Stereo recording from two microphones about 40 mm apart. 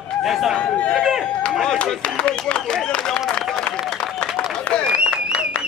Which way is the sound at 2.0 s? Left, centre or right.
Left.